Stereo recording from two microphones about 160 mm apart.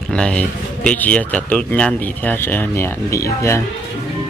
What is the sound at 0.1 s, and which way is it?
Speech, 5° left (ahead or behind).